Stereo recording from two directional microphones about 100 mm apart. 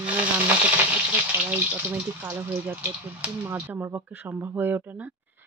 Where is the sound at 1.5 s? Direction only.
15° right (ahead or behind).